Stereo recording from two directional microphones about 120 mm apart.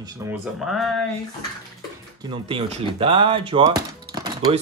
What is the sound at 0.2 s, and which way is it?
Speech, 25° right (ahead or behind).